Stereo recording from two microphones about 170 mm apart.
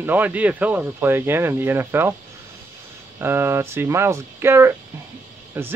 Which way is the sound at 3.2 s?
15° right (ahead or behind).